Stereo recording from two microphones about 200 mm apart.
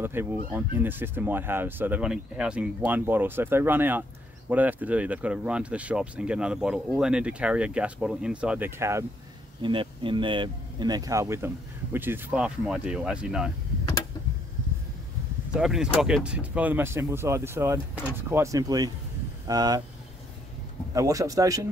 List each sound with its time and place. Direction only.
0.0 s speech: 10° right (ahead or behind)
9.6 s speech: 25° right (ahead or behind); by 13.5 s 5° right (ahead or behind)
15.5 s speech: 5° right (ahead or behind); by 19.8 s 20° right (ahead or behind)
20.9 s speech: 15° right (ahead or behind)